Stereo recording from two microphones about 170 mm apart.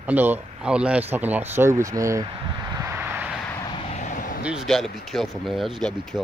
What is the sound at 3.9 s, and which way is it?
Vehicle, 50° left (ahead or behind).